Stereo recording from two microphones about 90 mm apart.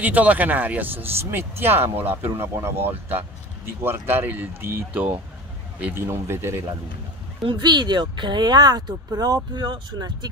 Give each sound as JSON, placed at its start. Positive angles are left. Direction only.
{"t": 0.0, "sound": "speech", "side_deg": -20}
{"t": 6.0, "sound": "speech", "side_deg": -30}
{"t": 7.4, "sound": "speech", "side_deg": -55}